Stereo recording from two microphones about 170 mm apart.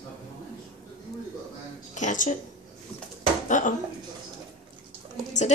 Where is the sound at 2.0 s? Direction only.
45° left (ahead or behind).